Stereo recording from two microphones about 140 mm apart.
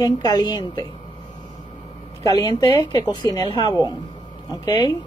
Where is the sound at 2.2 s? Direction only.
25° left (ahead or behind).